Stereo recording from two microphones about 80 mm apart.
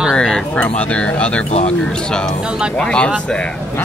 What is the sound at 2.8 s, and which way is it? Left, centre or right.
Speech, centre.